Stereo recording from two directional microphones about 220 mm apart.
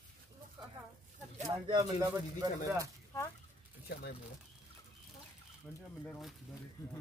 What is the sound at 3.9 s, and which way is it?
Speech, 45° left (ahead or behind).